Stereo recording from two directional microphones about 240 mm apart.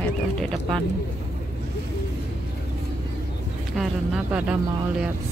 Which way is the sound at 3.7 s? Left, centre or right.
Centre.